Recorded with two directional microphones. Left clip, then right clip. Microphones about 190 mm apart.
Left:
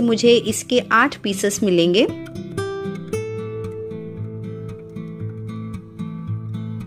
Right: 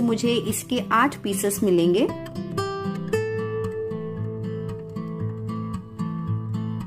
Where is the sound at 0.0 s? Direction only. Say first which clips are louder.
Left 8 dB; 15° left (ahead or behind).